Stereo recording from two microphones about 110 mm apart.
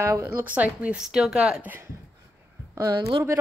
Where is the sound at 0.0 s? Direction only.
25° right (ahead or behind).